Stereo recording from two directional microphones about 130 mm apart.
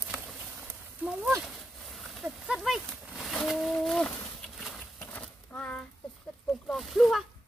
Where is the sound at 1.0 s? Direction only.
5° right (ahead or behind).